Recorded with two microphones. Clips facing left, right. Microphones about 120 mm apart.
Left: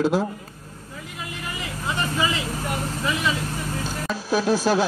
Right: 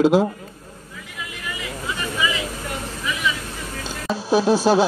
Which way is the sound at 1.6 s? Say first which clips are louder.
Left 2 dB; 35° left (ahead or behind).